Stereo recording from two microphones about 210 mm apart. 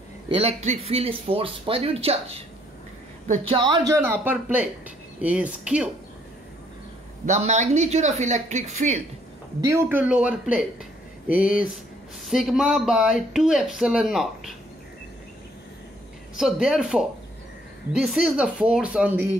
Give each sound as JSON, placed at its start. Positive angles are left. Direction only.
{"t": 0.3, "sound": "speech", "side_deg": -30}
{"t": 7.2, "sound": "speech", "side_deg": -35}
{"t": 9.7, "sound": "speech", "side_deg": -10}
{"t": 12.3, "sound": "speech", "side_deg": 0}
{"t": 16.3, "sound": "speech", "side_deg": 0}